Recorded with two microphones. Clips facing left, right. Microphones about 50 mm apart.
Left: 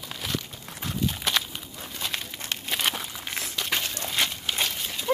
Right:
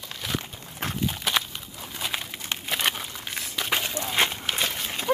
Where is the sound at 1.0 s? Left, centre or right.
Centre.